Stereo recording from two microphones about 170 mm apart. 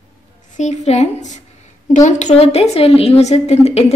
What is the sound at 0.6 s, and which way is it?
A woman's voice, 45° left (ahead or behind).